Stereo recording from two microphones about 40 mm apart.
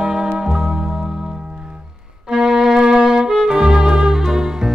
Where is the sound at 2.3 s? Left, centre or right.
Centre.